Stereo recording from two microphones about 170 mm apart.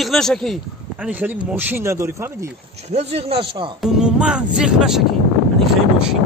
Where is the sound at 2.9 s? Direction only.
40° right (ahead or behind).